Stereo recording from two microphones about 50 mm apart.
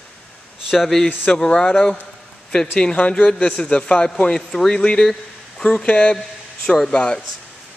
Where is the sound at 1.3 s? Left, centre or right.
Centre.